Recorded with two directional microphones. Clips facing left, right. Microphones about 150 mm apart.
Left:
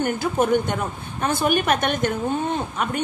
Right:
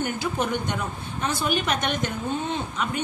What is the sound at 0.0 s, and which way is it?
A woman's voice, 50° left (ahead or behind).